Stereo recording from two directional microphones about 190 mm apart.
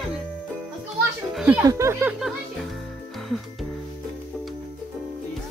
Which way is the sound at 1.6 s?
15° right (ahead or behind).